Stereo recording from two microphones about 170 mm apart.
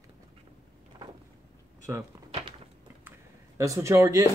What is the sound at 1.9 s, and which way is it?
Speech, 15° right (ahead or behind).